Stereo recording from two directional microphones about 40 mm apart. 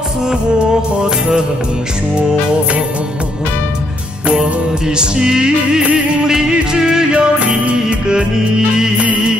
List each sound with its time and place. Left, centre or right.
4.9 s music: centre
7.2 s music: right